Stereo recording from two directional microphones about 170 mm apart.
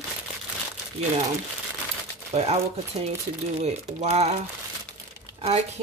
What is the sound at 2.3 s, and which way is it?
Speech, 40° right (ahead or behind).